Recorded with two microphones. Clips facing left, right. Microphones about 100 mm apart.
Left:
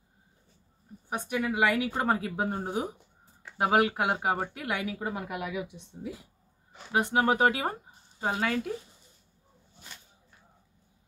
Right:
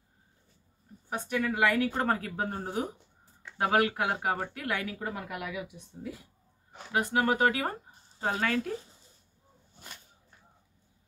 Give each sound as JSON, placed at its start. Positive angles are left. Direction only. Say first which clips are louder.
{"t": 1.1, "sound": "speech", "louder": "left 1 dB", "side_deg": 15}